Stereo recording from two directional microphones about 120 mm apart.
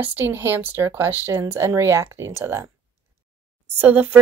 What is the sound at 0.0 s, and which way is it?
Speech, 15° right (ahead or behind).